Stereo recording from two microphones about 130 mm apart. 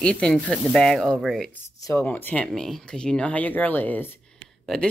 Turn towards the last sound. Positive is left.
turn(degrees=5)  # may be behind; listen again after turning